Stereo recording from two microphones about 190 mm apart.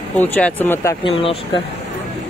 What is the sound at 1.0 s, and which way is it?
Speech, 30° left (ahead or behind).